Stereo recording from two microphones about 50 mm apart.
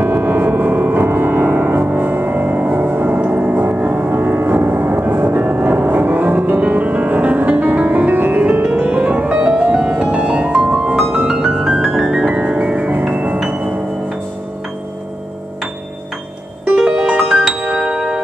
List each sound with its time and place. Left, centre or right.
0.0 s gong: right
1.0 s music: right
3.3 s gong: right
6.6 s music: right; by 12.3 s centre
12.3 s music: right
16.8 s music: centre
17.9 s wind chime: centre